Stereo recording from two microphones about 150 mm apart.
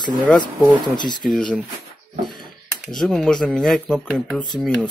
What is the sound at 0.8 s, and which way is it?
Speech, 30° left (ahead or behind).